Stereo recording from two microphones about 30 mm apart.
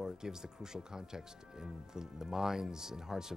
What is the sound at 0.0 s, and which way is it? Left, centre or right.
Speech, centre.